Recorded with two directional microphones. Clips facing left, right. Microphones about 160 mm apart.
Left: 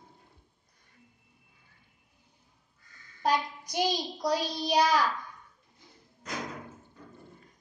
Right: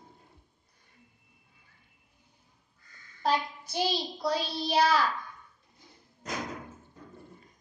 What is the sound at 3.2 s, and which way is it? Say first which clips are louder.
A child's voice: even; 15° left (ahead or behind).